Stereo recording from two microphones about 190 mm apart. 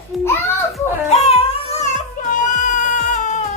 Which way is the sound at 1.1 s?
35° left (ahead or behind).